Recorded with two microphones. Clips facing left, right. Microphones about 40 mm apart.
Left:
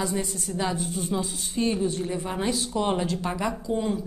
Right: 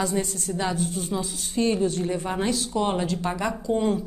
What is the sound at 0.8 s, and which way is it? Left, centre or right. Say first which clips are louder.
Speech: right 2 dB; right.